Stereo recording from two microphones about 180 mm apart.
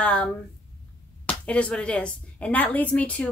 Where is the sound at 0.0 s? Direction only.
5° left (ahead or behind).